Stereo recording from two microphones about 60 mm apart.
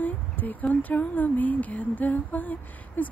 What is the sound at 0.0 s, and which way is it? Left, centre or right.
Speech, left.